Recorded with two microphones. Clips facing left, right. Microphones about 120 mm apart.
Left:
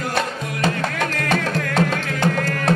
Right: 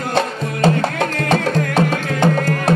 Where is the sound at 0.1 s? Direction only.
25° right (ahead or behind).